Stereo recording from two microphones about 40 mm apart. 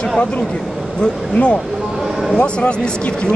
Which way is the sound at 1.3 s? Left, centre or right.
Left.